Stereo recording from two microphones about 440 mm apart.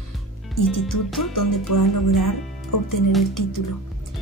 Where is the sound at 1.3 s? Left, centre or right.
Left.